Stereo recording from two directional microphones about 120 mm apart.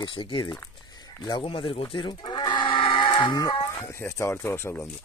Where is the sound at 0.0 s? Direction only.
45° left (ahead or behind).